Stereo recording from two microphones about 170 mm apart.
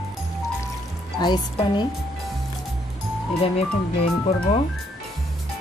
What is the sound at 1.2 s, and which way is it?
Speech, 25° left (ahead or behind).